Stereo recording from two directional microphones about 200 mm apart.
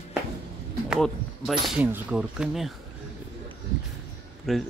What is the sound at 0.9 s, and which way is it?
Speech, centre (ahead or behind).